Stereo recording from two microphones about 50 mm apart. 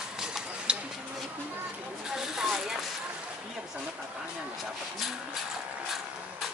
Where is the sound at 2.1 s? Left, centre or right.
Centre.